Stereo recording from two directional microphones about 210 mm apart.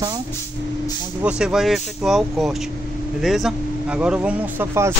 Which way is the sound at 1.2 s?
5° right (ahead or behind).